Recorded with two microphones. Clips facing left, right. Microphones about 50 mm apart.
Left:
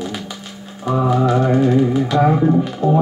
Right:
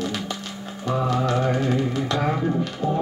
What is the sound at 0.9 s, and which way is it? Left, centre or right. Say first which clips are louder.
Music: left 7 dB; centre.